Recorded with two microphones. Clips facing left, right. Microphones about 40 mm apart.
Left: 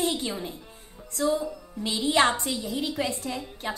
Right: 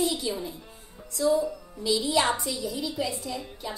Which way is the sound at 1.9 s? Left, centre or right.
Left.